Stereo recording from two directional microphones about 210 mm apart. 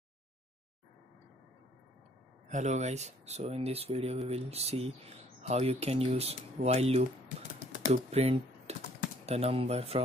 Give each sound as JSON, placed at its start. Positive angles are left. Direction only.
{"t": 2.4, "sound": "speech", "side_deg": -35}